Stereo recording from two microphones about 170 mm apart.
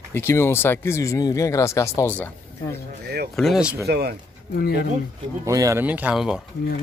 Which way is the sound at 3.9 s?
70° right (ahead or behind).